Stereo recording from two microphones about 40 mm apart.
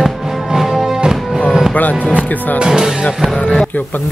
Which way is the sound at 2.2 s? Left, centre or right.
Left.